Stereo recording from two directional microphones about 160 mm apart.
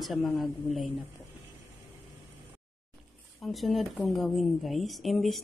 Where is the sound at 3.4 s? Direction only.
Centre (ahead or behind).